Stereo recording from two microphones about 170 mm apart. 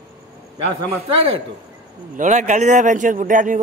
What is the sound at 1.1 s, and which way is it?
Speech, 35° right (ahead or behind).